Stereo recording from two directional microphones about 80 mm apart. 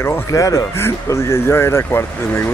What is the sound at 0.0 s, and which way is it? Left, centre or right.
Speech, left.